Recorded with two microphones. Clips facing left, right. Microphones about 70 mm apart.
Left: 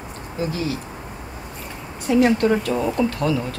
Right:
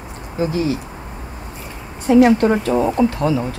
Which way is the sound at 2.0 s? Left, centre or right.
Right.